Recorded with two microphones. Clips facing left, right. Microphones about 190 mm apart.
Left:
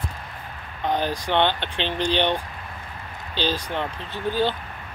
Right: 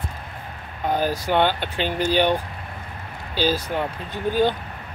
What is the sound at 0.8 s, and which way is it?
Speech, 10° right (ahead or behind).